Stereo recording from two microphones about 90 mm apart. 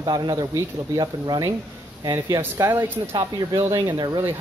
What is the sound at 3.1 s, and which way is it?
Speech, 45° right (ahead or behind).